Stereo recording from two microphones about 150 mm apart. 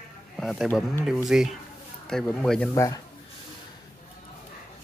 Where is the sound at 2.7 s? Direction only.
20° left (ahead or behind).